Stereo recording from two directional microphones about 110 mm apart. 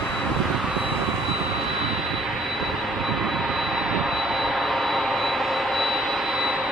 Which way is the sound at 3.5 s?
Centre (ahead or behind).